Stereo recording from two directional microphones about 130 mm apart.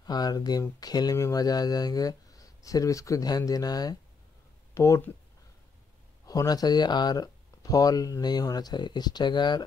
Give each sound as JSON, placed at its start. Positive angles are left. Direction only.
{"t": 0.0, "sound": "speech", "side_deg": 30}
{"t": 6.2, "sound": "speech", "side_deg": 30}